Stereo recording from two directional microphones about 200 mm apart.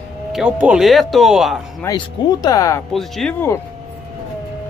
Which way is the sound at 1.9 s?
20° left (ahead or behind).